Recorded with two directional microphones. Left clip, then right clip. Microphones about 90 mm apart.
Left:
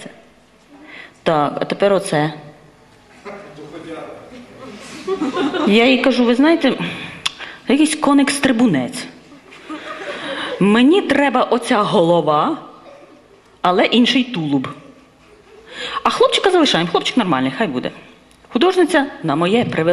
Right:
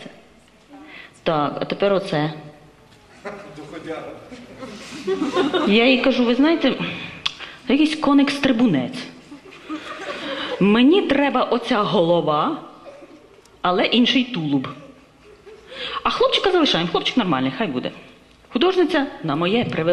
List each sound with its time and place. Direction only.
0.8 s speech: 40° left (ahead or behind)
5.4 s a woman's voice: 35° left (ahead or behind)